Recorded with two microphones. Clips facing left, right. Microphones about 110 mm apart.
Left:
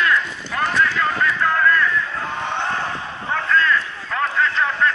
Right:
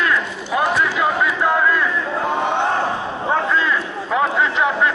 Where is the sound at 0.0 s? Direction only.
15° right (ahead or behind).